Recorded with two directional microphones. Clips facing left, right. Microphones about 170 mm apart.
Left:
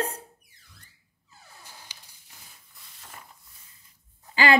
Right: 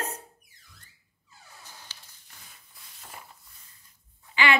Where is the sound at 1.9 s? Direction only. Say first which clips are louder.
Even; 15° left (ahead or behind).